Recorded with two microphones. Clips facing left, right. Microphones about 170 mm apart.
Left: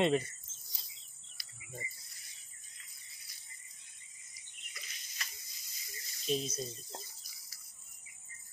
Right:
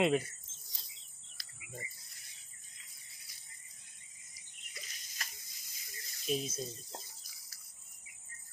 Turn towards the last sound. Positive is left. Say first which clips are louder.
# left 1 dB
turn(degrees=-5)  # may be behind; listen again after turning